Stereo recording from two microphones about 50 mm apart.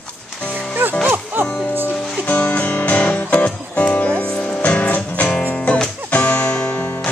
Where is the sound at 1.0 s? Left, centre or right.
Right.